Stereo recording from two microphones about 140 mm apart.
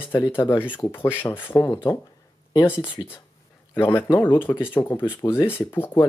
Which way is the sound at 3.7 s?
15° left (ahead or behind).